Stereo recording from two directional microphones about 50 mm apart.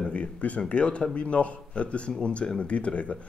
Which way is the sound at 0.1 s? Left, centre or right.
Left.